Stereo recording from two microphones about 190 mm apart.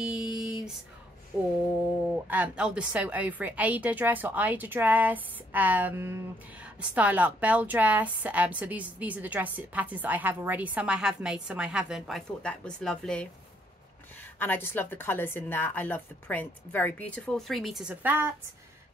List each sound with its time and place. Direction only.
0.0 s a sound: 5° right (ahead or behind)
1.3 s a woman's voice: 10° right (ahead or behind)
14.4 s a woman's voice: 10° left (ahead or behind); by 18.3 s 10° right (ahead or behind)